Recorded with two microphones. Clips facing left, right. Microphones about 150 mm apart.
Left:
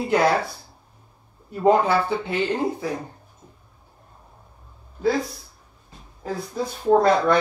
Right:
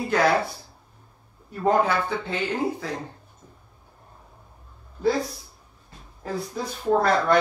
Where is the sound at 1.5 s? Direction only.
15° left (ahead or behind).